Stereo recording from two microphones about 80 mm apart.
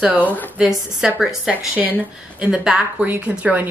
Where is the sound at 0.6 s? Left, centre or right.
Centre.